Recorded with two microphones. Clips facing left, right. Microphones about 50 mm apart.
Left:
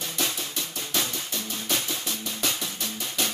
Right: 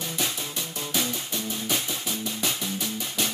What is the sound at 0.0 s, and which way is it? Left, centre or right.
Music, centre.